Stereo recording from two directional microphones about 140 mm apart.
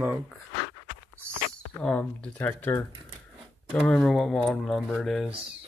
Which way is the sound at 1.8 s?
10° left (ahead or behind).